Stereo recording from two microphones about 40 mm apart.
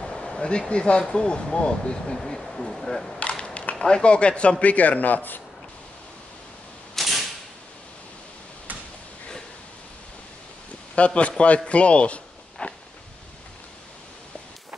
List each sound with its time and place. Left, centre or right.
0.1 s speech: centre
2.1 s speech: centre
3.2 s a sound: left
3.8 s speech: left
7.0 s mechanisms: centre
11.0 s speech: left
12.6 s a sound: left